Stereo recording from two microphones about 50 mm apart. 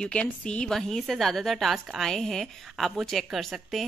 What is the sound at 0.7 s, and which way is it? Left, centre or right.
A woman's voice, centre.